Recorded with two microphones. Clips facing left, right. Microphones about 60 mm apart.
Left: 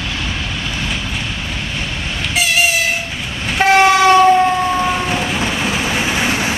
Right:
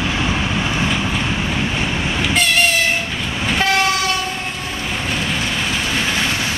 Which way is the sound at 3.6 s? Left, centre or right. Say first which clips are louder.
Left 8 dB; left.